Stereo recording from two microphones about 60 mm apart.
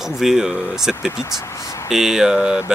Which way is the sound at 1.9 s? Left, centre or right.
Centre.